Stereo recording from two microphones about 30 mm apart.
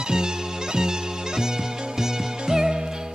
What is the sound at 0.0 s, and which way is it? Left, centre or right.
Music, right.